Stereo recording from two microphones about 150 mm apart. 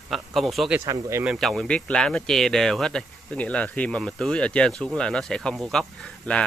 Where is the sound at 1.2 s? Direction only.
Centre (ahead or behind).